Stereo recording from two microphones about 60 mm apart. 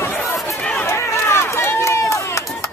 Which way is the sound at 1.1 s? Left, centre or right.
Left.